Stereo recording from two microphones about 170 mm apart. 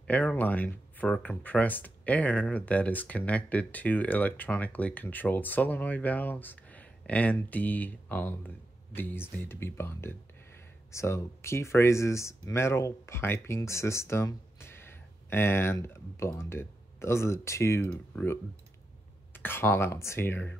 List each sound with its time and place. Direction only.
0.0 s speech: 5° left (ahead or behind)